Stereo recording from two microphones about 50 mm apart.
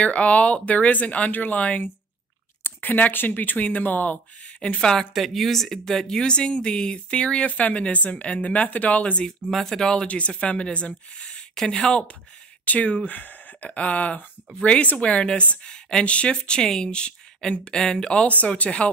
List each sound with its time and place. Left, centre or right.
0.0 s speech: left
2.6 s speech: left
4.6 s speech: centre
5.1 s speech: centre; by 9.2 s left
9.5 s speech: centre
10.0 s speech: left
12.6 s speech: left